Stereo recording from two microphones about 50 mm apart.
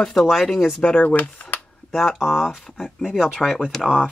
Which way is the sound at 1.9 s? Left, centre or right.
Centre.